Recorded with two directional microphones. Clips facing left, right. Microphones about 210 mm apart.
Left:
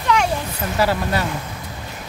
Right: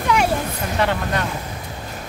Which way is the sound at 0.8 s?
5° left (ahead or behind).